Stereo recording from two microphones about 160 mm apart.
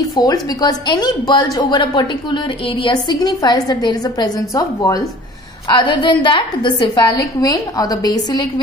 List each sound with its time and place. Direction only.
0.1 s a woman's voice: 20° left (ahead or behind)